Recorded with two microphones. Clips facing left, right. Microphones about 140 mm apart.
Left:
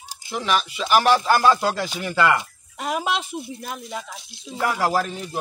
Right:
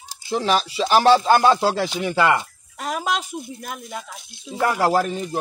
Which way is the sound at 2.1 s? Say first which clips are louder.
Right 1 dB; 5° right (ahead or behind).